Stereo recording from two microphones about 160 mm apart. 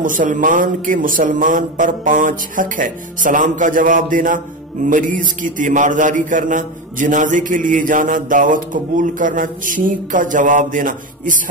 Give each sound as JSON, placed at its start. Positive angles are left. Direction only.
{"t": 0.0, "sound": "a man's voice", "side_deg": -55}